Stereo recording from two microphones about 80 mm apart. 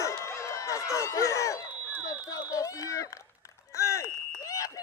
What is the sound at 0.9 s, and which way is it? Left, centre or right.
Speech, left.